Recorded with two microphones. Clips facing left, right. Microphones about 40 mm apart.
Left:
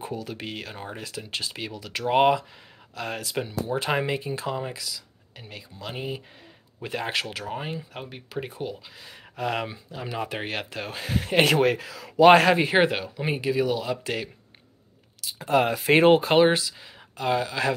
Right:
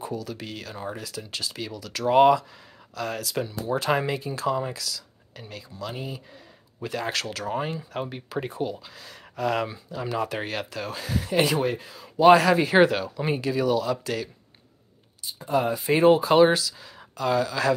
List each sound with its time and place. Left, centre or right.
0.0 s speech: left
7.4 s speech: centre
9.0 s speech: left
11.5 s speech: left
12.3 s speech: left
12.5 s speech: left
15.2 s speech: left